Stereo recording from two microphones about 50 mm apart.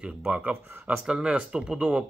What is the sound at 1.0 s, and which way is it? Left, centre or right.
Speech, centre.